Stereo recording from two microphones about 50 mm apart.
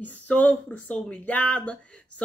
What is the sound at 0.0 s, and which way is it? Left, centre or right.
Speech, left.